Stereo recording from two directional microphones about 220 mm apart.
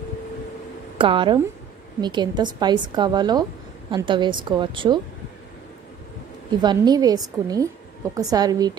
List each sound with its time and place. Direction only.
0.9 s a woman's voice: 25° right (ahead or behind)
6.6 s a woman's voice: 20° right (ahead or behind)